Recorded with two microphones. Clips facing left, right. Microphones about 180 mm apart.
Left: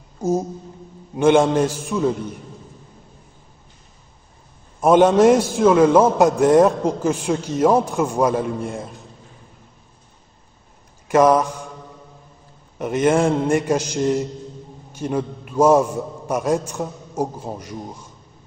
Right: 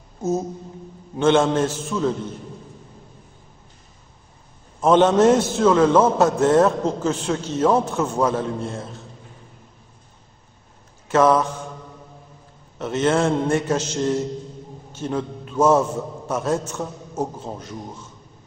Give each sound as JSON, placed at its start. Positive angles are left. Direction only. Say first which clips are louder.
{"t": 0.2, "sound": "a sound", "louder": "left 2 dB", "side_deg": 10}
{"t": 1.1, "sound": "a man's voice", "louder": "left 2 dB", "side_deg": 15}
{"t": 4.7, "sound": "a man's voice", "louder": "left 2 dB", "side_deg": 10}
{"t": 11.1, "sound": "mantra", "louder": "left 2 dB", "side_deg": 15}
{"t": 12.7, "sound": "a man's voice", "louder": "left 2 dB", "side_deg": 10}